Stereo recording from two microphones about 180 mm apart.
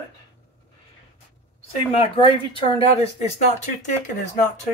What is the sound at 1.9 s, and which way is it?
A woman's voice, 30° left (ahead or behind).